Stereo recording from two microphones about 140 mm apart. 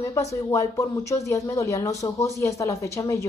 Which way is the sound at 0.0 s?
20° left (ahead or behind).